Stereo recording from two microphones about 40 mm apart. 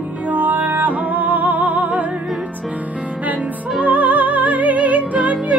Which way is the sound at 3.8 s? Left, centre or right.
Right.